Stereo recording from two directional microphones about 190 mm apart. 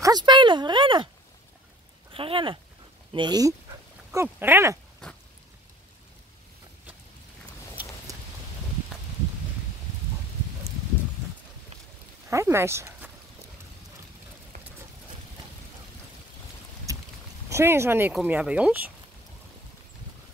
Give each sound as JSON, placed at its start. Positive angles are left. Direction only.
{"t": 0.0, "sound": "a sound", "side_deg": -20}
{"t": 2.1, "sound": "speech", "side_deg": -30}
{"t": 12.3, "sound": "speech", "side_deg": -15}
{"t": 16.9, "sound": "boat", "side_deg": -15}
{"t": 17.5, "sound": "speech", "side_deg": -15}